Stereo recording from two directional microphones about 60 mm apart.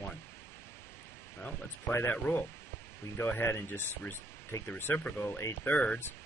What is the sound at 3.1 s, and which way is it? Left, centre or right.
Speech, left.